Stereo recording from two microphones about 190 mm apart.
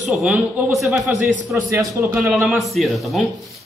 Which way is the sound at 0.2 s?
5° right (ahead or behind).